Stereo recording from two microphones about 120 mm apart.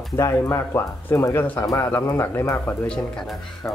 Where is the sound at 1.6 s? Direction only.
30° left (ahead or behind).